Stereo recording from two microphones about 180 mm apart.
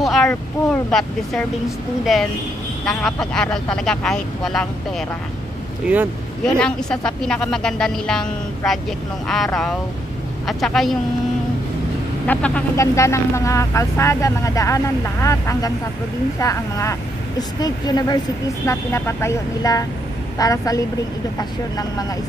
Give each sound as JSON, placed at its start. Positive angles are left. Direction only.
{"t": 0.0, "sound": "boat", "side_deg": 0}
{"t": 0.8, "sound": "a woman's voice", "side_deg": 5}
{"t": 6.4, "sound": "a woman's voice", "side_deg": 5}
{"t": 12.3, "sound": "speech", "side_deg": 5}